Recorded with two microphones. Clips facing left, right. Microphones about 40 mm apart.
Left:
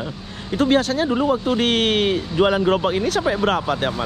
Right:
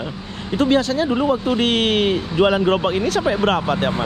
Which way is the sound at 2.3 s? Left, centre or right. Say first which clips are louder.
Right 1 dB; right.